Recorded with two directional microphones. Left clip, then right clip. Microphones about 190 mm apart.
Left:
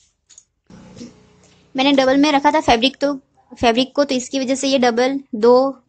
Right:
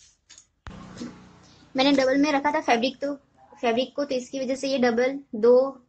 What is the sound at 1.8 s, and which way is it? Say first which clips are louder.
A woman's voice: left 6 dB; 25° left (ahead or behind).